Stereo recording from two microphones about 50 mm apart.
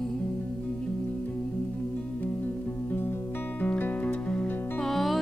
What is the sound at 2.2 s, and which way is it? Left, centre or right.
Music, left.